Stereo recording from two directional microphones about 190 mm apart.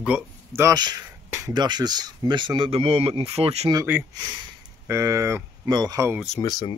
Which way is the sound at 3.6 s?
15° right (ahead or behind).